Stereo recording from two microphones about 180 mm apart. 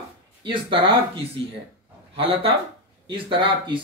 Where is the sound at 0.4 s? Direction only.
30° right (ahead or behind).